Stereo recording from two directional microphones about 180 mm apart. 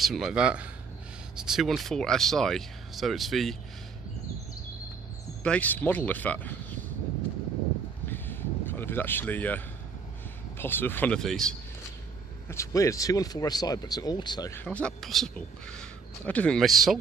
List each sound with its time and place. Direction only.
0.0 s a man's voice: centre (ahead or behind)
5.4 s speech: 5° left (ahead or behind)
8.1 s a sound: 10° left (ahead or behind)
10.6 s speech: 10° left (ahead or behind)
12.4 s speech: 15° left (ahead or behind)
14.6 s a man's voice: 5° left (ahead or behind)